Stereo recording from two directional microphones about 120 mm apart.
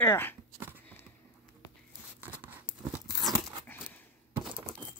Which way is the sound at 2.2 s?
15° right (ahead or behind).